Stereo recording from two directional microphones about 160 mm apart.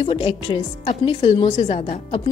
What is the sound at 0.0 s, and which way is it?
Speech, 35° left (ahead or behind).